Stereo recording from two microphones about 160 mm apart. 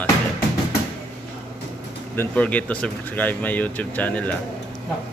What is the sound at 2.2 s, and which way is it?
Speech, 10° left (ahead or behind).